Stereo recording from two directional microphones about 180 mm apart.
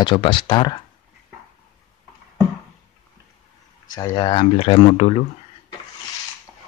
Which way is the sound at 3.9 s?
20° left (ahead or behind).